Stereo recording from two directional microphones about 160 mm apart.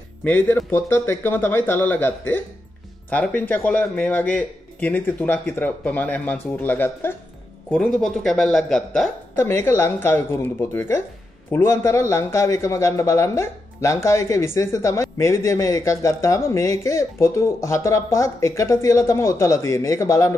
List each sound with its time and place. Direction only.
0.2 s speech: 10° left (ahead or behind)
9.3 s speech: 15° left (ahead or behind)